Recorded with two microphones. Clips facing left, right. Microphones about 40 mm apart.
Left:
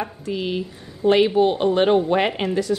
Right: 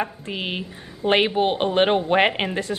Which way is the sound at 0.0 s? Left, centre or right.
Right.